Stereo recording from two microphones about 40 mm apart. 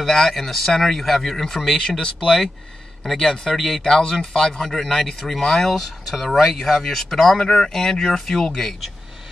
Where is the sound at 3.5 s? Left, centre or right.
Centre.